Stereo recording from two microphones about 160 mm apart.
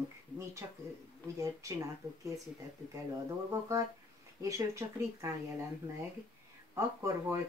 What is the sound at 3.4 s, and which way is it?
Speech, 20° right (ahead or behind).